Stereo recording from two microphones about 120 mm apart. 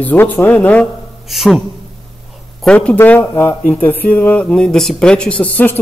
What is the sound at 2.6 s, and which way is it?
Speech, 10° left (ahead or behind).